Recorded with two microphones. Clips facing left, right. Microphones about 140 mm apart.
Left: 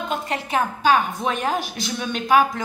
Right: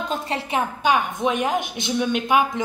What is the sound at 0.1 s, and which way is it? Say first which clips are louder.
A woman's voice: left 2 dB; 25° right (ahead or behind).